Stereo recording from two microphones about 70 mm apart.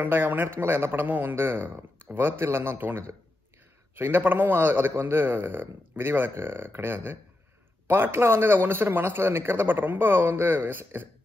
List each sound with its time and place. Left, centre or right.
0.0 s a man's voice: right